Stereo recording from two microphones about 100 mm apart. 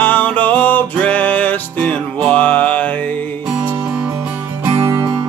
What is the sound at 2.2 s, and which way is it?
Mantra, 15° left (ahead or behind).